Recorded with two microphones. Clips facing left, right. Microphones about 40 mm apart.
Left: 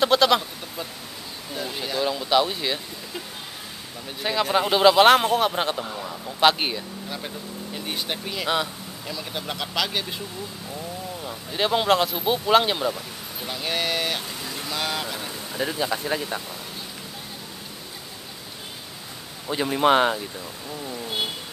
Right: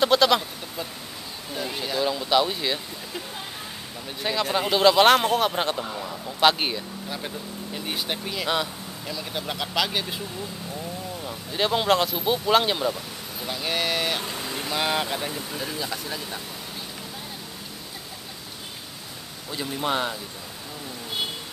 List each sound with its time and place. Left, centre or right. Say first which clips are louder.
0.0 s a sound: left 1 dB; centre
4.2 s speech: left 3 dB; centre
11.2 s speech: left 1 dB; centre
14.2 s speech: right 2 dB; centre
15.8 s speech: left 6 dB; left
16.2 s speech: left 4 dB; centre
19.5 s speech: left 7 dB; left